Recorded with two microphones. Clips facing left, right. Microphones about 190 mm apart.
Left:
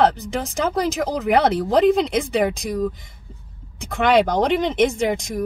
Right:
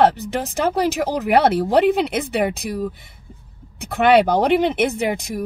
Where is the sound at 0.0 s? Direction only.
5° right (ahead or behind).